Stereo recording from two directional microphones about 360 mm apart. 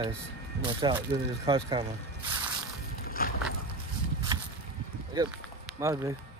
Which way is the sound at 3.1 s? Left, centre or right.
Left.